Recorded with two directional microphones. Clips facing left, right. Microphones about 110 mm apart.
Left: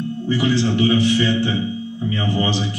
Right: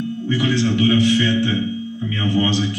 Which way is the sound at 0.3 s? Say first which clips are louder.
Left 1 dB; 30° left (ahead or behind).